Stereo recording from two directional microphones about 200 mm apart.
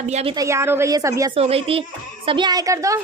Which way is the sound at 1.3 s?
30° right (ahead or behind).